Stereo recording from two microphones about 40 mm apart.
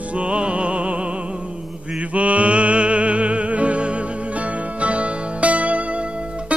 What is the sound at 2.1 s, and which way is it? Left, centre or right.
Music, right.